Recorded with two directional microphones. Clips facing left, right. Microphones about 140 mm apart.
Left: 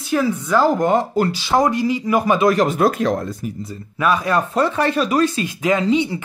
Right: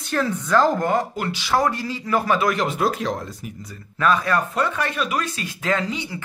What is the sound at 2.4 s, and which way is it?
Speech, 45° left (ahead or behind).